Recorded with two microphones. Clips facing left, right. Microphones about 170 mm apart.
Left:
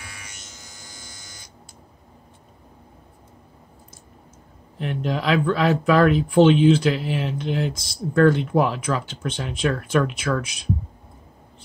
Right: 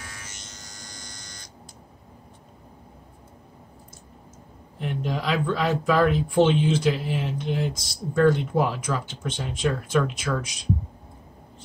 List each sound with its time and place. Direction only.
0.0 s electric shaver: 10° left (ahead or behind)
4.7 s speech: 70° left (ahead or behind)